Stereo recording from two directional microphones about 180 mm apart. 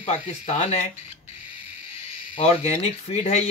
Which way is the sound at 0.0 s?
40° left (ahead or behind).